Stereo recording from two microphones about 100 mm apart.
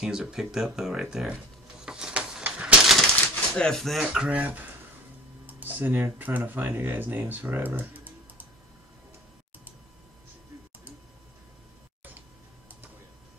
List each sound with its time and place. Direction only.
0.0 s speech: 5° right (ahead or behind)
1.9 s a sound: 10° right (ahead or behind)
3.5 s speech: 5° left (ahead or behind); by 7.3 s 20° right (ahead or behind)
7.5 s typing: 20° right (ahead or behind)